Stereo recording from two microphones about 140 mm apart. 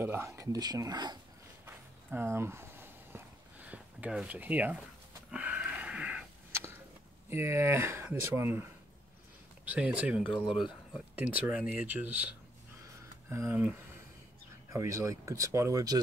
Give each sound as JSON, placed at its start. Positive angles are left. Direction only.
{"t": 0.0, "sound": "speech", "side_deg": -15}
{"t": 1.7, "sound": "a sound", "side_deg": -15}
{"t": 5.3, "sound": "wheeze", "side_deg": -10}
{"t": 7.2, "sound": "speech", "side_deg": -20}
{"t": 9.7, "sound": "speech", "side_deg": -10}
{"t": 10.3, "sound": "speech", "side_deg": 35}
{"t": 11.1, "sound": "speech", "side_deg": -10}
{"t": 13.4, "sound": "speech", "side_deg": -10}
{"t": 14.7, "sound": "speech", "side_deg": -25}